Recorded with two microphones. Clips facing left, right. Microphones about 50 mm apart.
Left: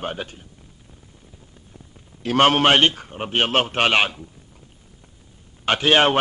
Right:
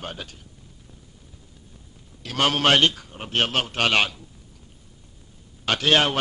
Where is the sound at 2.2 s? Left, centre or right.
Left.